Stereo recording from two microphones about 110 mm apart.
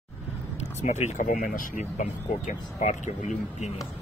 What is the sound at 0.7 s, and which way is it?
Speech, 90° left.